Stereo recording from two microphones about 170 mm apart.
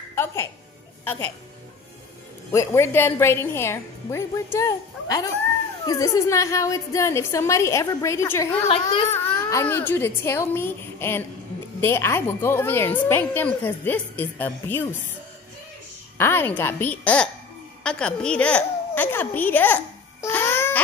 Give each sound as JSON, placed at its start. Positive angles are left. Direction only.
{"t": 0.1, "sound": "a woman's voice", "side_deg": 15}
{"t": 2.5, "sound": "a woman's voice", "side_deg": 15}
{"t": 16.2, "sound": "a woman's voice", "side_deg": 10}